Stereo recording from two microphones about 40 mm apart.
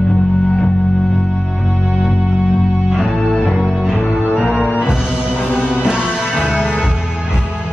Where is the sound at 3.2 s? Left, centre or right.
Centre.